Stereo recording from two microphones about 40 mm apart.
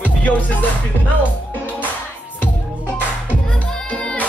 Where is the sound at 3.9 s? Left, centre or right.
Left.